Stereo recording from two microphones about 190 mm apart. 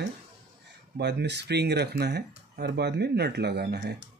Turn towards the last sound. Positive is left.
turn(degrees=-60)  # may be behind; listen again after turning